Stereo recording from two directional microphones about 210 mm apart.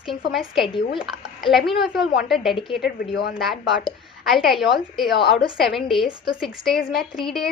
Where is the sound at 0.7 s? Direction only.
25° left (ahead or behind).